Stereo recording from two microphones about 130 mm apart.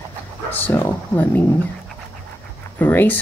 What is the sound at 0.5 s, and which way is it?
Speech, 15° left (ahead or behind).